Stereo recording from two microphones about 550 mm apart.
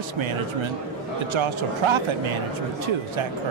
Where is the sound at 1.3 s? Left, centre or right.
Right.